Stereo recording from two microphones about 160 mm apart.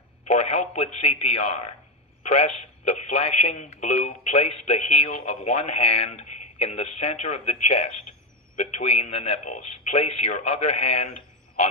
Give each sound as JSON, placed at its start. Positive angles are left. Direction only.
{"t": 0.3, "sound": "speech", "side_deg": 40}